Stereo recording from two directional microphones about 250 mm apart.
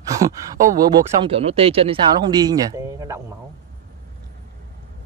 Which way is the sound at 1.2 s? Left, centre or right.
Right.